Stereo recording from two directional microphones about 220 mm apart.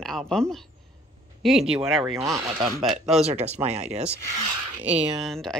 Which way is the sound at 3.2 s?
30° right (ahead or behind).